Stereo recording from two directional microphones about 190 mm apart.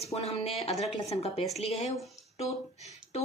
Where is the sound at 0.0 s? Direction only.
35° left (ahead or behind).